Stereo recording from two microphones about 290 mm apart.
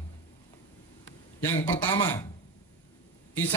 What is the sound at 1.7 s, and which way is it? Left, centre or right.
Speech, left.